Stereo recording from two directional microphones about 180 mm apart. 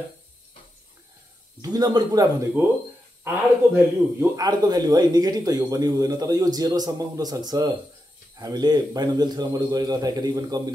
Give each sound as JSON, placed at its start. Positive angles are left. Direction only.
{"t": 1.6, "sound": "a man's voice", "side_deg": -20}